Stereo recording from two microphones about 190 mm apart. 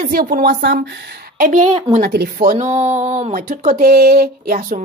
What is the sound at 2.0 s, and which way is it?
Speech, 55° right (ahead or behind).